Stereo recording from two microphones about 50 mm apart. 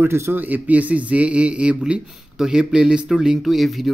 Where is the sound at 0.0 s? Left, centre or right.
Right.